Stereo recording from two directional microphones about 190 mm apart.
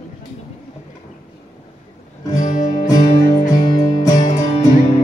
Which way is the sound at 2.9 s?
20° left (ahead or behind).